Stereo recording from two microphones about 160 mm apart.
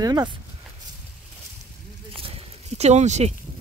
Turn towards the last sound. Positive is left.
turn(degrees=-45)  # may be behind; listen again after turning